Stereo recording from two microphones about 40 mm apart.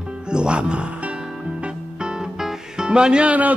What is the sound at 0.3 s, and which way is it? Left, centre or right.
Speech, right.